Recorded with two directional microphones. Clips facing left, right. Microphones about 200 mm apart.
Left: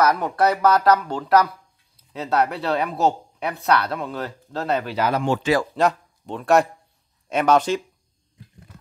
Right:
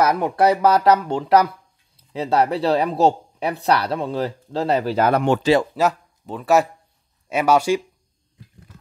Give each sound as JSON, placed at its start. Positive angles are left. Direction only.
{"t": 0.0, "sound": "speech", "side_deg": -25}
{"t": 4.9, "sound": "speech", "side_deg": -55}
{"t": 5.4, "sound": "speech", "side_deg": -25}
{"t": 5.8, "sound": "speech", "side_deg": -5}